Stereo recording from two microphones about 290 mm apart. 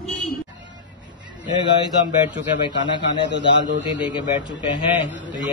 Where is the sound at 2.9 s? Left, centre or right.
Centre.